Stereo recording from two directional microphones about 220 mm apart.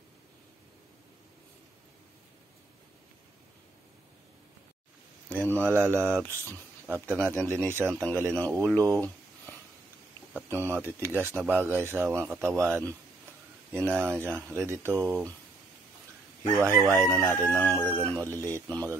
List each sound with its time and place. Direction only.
5.3 s speech: 5° left (ahead or behind)
5.7 s speech: 10° right (ahead or behind)
10.3 s speech: 10° right (ahead or behind)
13.7 s speech: 5° left (ahead or behind)
14.2 s speech: 10° right (ahead or behind)
16.6 s speech: 15° right (ahead or behind)
17.5 s crowing: 5° left (ahead or behind)
17.7 s speech: 10° right (ahead or behind)